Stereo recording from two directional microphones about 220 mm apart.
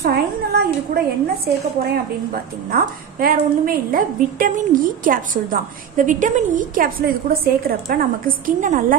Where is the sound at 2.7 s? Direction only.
40° right (ahead or behind).